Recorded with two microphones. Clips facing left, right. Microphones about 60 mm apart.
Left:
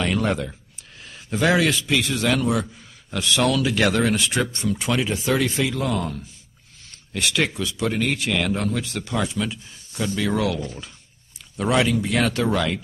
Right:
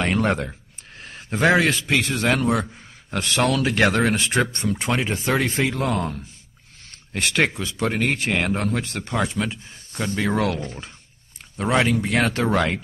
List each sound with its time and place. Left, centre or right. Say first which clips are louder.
0.0 s speech: right 1 dB; right